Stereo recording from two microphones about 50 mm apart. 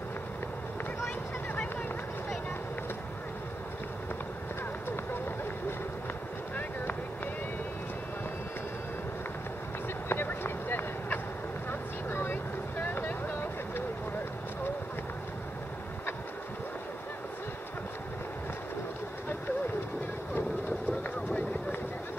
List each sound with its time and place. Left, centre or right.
10.0 s vehicle: left